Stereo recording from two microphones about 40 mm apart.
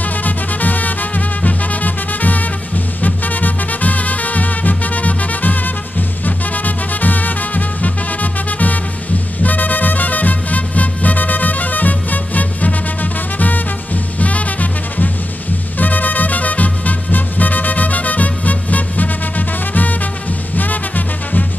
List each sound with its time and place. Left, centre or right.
0.0 s music: left